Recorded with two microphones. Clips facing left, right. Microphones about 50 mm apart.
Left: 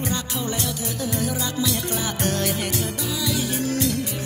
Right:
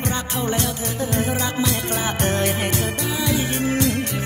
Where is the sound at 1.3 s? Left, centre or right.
Right.